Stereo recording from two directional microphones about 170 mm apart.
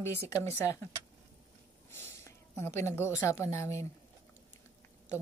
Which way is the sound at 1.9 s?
15° left (ahead or behind).